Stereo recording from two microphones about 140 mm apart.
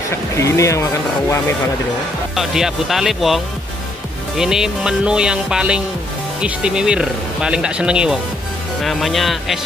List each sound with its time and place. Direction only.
0.4 s speech: 20° left (ahead or behind)
2.3 s music: centre (ahead or behind)
4.4 s music: 5° right (ahead or behind)
6.4 s speech: 5° right (ahead or behind)
8.8 s music: centre (ahead or behind)